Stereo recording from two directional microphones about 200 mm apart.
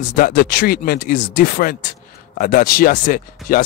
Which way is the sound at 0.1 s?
45° left (ahead or behind).